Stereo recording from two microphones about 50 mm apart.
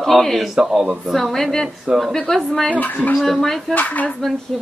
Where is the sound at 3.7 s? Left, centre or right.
Left.